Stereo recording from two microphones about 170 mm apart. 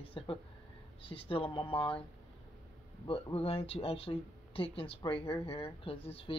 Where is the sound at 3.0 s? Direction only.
30° left (ahead or behind).